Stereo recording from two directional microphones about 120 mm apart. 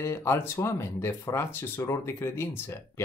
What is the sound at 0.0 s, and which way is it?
Speech, 20° left (ahead or behind).